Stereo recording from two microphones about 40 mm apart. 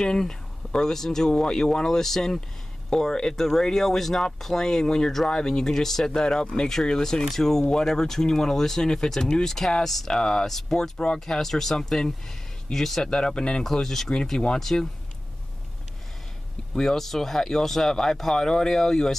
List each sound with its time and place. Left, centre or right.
0.0 s speech: centre
13.0 s speech: left
13.7 s speech: centre
16.7 s speech: centre